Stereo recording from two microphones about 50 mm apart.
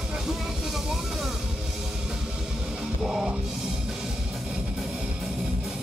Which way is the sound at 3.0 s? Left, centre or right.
Centre.